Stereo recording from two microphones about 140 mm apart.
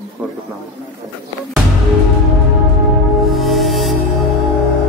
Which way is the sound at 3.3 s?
Centre (ahead or behind).